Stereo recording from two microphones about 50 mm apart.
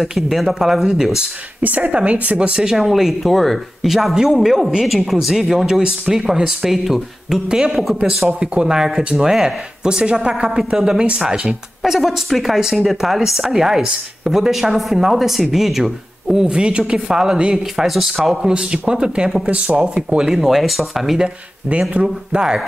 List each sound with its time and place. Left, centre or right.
0.0 s speech: centre
1.6 s speech: right
2.5 s speech: centre
16.4 s speech: centre
17.8 s speech: centre; by 19.7 s right
20.2 s speech: centre
21.9 s speech: centre